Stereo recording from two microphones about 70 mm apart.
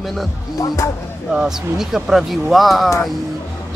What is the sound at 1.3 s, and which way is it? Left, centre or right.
Speech, centre.